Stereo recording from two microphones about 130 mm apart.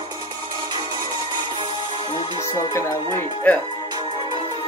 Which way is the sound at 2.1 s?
35° left (ahead or behind).